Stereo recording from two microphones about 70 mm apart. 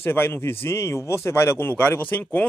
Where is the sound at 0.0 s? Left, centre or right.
Left.